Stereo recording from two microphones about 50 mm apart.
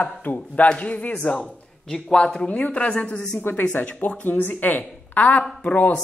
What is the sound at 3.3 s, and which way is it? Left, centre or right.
Speech, left.